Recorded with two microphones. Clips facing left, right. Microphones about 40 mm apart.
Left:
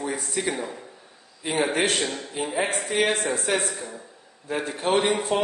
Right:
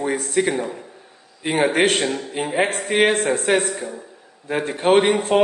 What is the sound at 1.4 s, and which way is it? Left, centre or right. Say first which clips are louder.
A man's voice: right 6 dB; right.